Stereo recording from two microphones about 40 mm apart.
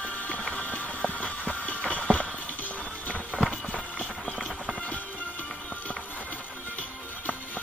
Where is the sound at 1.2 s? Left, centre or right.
Left.